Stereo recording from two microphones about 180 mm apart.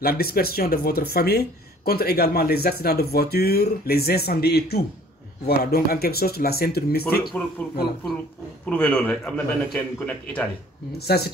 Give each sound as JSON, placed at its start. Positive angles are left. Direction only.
{"t": 0.0, "sound": "speech", "side_deg": 55}
{"t": 7.6, "sound": "a man's voice", "side_deg": 10}
{"t": 11.0, "sound": "speech", "side_deg": 60}